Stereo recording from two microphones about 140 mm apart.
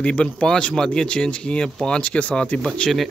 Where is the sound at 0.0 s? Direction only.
10° left (ahead or behind).